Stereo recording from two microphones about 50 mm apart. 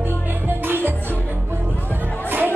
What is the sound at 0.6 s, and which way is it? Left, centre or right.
Music, right.